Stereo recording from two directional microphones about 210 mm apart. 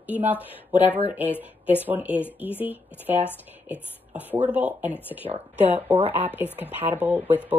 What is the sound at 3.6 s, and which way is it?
Beatboxing, 5° right (ahead or behind).